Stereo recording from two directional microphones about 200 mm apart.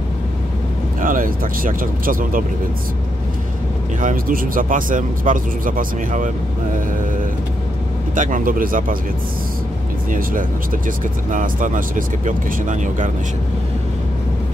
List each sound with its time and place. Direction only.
1.0 s speech: 45° right (ahead or behind)
4.0 s speech: 40° right (ahead or behind)
8.2 s speech: 40° right (ahead or behind)
11.3 s speech: 40° right (ahead or behind)